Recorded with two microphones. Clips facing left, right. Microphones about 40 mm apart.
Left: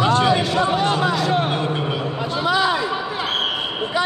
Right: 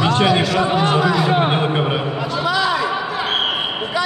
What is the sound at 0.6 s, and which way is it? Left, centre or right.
Speech, right.